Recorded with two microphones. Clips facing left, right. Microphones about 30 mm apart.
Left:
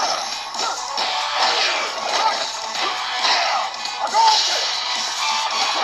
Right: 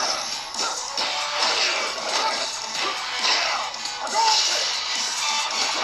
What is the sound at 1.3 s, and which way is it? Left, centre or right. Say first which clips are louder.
Music: left 4 dB; centre.